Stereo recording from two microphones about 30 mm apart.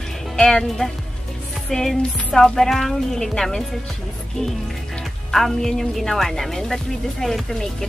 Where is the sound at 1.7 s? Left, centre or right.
Left.